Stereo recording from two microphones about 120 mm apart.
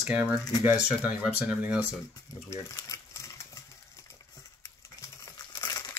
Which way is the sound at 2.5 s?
30° left (ahead or behind).